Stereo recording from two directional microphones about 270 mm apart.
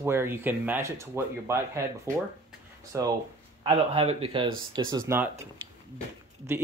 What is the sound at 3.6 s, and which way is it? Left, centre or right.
Speech, right.